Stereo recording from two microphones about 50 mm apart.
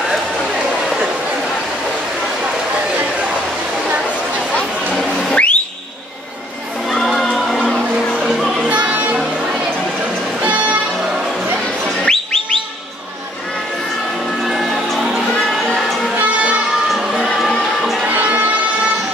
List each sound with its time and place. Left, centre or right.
5.3 s whistle: left
7.1 s crowd: centre
8.4 s music: centre
8.6 s music: right
10.4 s music: right
12.0 s bird: centre
14.5 s music: centre
18.0 s music: right